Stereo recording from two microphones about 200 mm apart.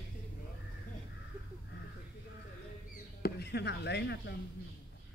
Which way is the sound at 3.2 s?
55° left (ahead or behind).